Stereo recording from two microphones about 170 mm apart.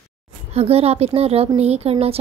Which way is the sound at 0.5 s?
35° right (ahead or behind).